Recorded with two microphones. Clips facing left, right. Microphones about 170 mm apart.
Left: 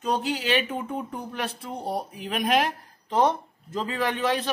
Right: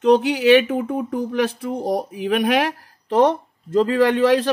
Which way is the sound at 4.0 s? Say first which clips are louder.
Right 9 dB; 85° right.